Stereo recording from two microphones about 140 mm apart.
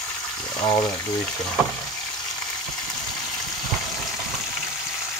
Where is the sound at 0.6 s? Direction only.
25° left (ahead or behind).